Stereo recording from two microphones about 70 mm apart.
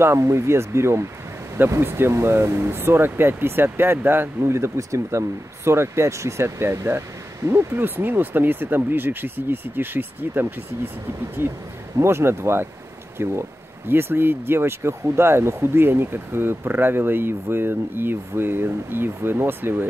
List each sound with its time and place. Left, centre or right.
0.0 s speech: right